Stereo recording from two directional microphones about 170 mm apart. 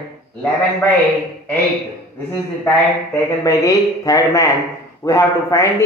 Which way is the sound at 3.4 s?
15° left (ahead or behind).